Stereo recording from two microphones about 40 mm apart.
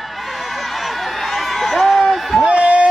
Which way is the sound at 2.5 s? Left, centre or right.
Right.